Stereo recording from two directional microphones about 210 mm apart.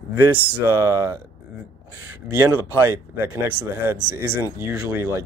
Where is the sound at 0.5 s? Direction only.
10° right (ahead or behind).